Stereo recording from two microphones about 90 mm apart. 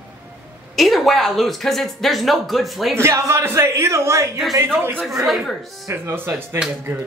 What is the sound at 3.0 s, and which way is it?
A man's voice, 30° right (ahead or behind).